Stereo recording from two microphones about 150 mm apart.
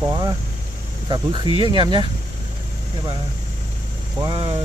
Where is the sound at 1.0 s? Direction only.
30° right (ahead or behind).